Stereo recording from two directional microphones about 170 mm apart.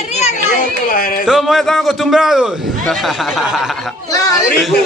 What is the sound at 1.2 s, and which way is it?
A man's voice, centre (ahead or behind).